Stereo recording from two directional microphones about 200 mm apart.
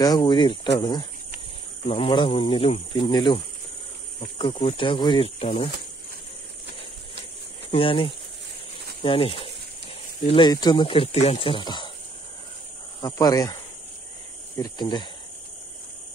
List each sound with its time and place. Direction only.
0.0 s speech: 20° left (ahead or behind)
4.4 s speech: 25° left (ahead or behind)
7.7 s speech: 25° left (ahead or behind)
13.0 s speech: 20° left (ahead or behind)
14.6 s speech: 20° left (ahead or behind)